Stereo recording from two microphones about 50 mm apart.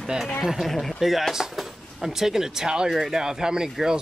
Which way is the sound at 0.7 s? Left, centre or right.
Centre.